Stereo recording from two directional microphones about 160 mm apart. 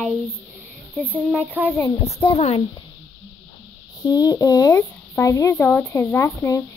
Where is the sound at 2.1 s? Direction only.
40° left (ahead or behind).